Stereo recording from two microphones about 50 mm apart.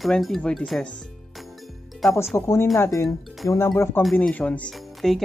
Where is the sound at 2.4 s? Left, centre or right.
Left.